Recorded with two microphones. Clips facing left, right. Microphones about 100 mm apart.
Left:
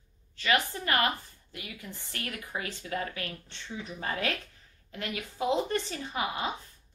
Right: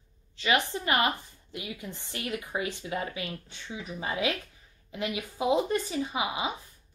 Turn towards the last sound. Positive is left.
turn(degrees=-10)  # may be behind; listen again after turning